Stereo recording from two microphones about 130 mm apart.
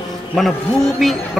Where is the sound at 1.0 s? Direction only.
Centre (ahead or behind).